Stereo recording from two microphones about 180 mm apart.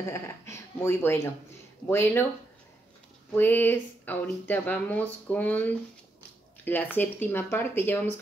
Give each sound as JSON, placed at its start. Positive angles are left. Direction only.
{"t": 0.1, "sound": "speech", "side_deg": 15}
{"t": 3.3, "sound": "speech", "side_deg": 10}